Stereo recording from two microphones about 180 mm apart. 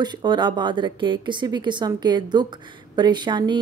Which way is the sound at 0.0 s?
25° right (ahead or behind).